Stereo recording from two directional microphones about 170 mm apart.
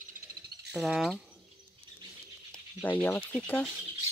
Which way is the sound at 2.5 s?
10° left (ahead or behind).